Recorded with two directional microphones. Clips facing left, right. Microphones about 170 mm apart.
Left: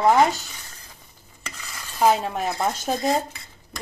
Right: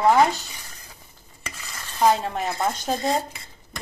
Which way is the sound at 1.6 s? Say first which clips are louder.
Even; centre (ahead or behind).